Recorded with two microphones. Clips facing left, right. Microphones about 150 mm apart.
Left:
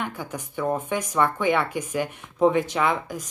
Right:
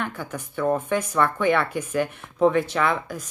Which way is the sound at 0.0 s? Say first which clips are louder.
Right 1 dB; 15° left (ahead or behind).